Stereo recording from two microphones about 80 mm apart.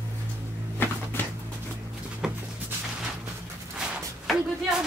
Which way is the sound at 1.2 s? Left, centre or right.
Left.